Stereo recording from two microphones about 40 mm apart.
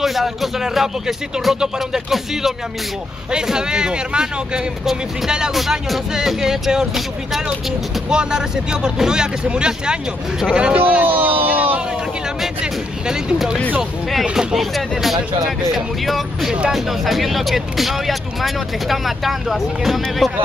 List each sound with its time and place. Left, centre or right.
0.0 s speech: centre
2.0 s speech: centre
3.3 s speech: centre
5.5 s speech: centre
6.1 s music: centre
8.1 s speech: centre
10.8 s speech: right
11.1 s a sound: right
14.3 s music: centre
14.6 s speech: centre